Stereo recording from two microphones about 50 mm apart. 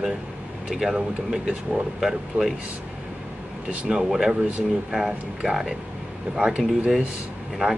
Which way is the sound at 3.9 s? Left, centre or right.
Centre.